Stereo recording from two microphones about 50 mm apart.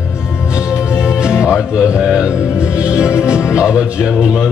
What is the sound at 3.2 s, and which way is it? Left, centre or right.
Music, centre.